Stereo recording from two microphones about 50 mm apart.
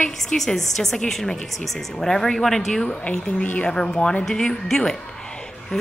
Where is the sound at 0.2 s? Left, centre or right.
Centre.